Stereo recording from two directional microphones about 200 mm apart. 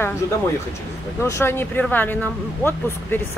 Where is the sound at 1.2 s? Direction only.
15° left (ahead or behind).